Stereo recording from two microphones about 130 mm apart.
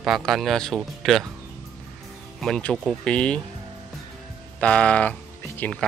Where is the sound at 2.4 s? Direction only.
5° left (ahead or behind).